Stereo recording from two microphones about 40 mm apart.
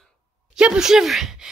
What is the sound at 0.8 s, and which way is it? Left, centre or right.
Speech, centre.